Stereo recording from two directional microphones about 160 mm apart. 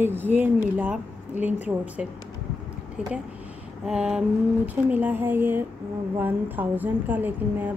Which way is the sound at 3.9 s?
5° right (ahead or behind).